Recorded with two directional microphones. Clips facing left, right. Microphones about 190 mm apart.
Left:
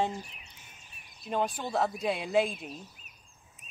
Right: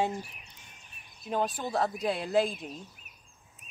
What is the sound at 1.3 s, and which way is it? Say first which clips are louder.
Speech: even; centre (ahead or behind).